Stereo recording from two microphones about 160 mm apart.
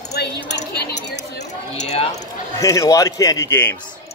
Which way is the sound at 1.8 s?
45° left (ahead or behind).